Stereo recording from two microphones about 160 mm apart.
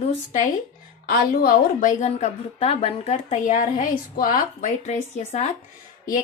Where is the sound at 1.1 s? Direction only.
70° left (ahead or behind).